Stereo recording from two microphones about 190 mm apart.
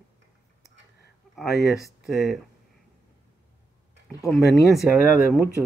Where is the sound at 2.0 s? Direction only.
Centre (ahead or behind).